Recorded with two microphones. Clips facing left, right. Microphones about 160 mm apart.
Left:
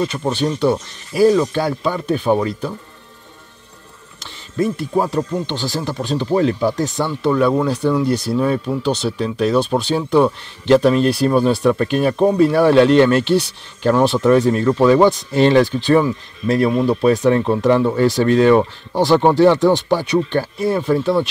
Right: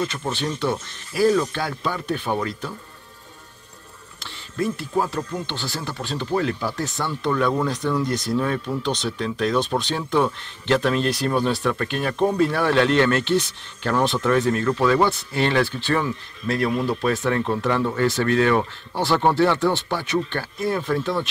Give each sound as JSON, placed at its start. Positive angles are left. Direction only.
{"t": 0.3, "sound": "speech", "side_deg": 15}
{"t": 4.2, "sound": "a sound", "side_deg": 15}
{"t": 5.1, "sound": "speech", "side_deg": 15}
{"t": 7.1, "sound": "speech", "side_deg": 10}
{"t": 15.3, "sound": "speech", "side_deg": 30}
{"t": 15.6, "sound": "speech", "side_deg": 15}